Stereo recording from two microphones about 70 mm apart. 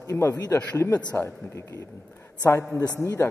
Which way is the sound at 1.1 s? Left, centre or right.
Left.